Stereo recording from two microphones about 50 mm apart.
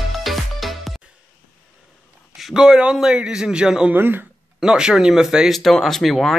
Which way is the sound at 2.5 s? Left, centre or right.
Centre.